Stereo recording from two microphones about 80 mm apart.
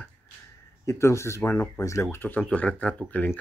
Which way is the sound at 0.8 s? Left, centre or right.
Left.